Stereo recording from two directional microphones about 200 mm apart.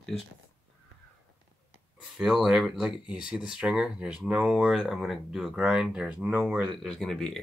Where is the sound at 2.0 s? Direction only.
Centre (ahead or behind).